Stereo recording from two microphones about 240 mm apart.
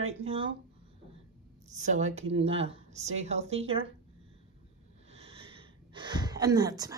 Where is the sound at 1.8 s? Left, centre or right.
Right.